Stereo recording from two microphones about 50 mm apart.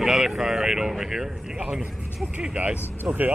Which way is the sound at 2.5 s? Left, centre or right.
Right.